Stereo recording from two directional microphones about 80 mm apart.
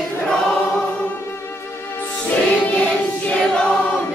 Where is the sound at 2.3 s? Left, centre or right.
Centre.